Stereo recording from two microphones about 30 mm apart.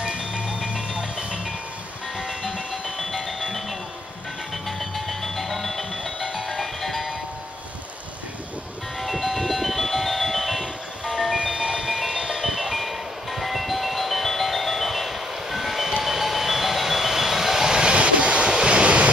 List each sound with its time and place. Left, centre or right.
0.0 s music: right
2.1 s music: centre
4.6 s music: centre
9.0 s music: centre
11.3 s music: right
12.4 s music: centre
16.0 s vehicle: centre
17.8 s vehicle: right
18.5 s waves: right